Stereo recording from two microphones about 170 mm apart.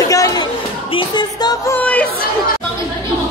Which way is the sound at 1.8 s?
5° left (ahead or behind).